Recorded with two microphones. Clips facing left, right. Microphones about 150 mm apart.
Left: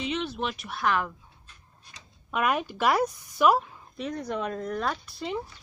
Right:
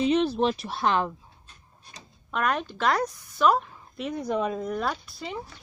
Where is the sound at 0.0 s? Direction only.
35° right (ahead or behind).